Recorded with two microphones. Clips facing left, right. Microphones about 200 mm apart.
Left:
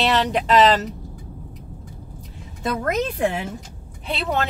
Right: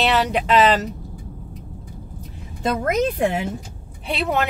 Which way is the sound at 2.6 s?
20° right (ahead or behind).